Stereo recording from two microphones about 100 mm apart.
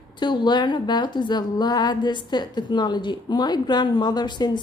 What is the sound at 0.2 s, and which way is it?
A woman's voice, 50° left (ahead or behind).